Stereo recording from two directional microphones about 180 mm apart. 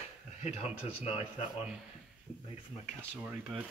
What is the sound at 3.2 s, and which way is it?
Speech, 5° right (ahead or behind).